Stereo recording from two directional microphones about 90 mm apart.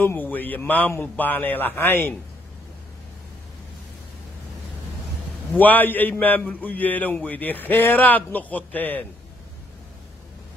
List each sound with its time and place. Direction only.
0.0 s a man's voice: 20° left (ahead or behind)
5.5 s a man's voice: 20° left (ahead or behind)